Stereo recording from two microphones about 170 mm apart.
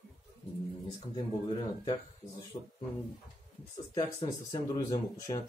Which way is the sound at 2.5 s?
40° left (ahead or behind).